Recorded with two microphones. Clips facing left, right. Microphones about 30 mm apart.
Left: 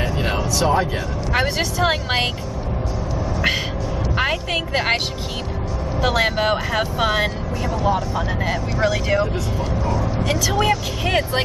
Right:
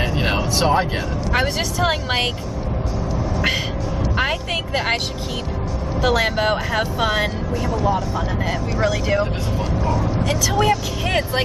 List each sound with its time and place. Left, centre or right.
0.0 s a sound: right
1.3 s speech: centre
3.3 s speech: centre